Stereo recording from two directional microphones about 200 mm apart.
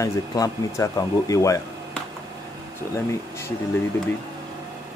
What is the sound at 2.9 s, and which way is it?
Speech, 15° left (ahead or behind).